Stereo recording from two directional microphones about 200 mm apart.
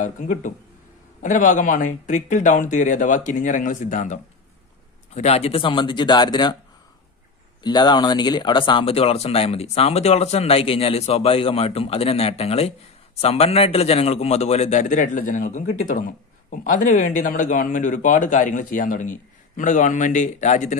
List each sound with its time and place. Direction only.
0.0 s a man's voice: 40° left (ahead or behind); by 6.6 s 20° left (ahead or behind)
7.6 s a man's voice: 20° left (ahead or behind); by 20.7 s 35° left (ahead or behind)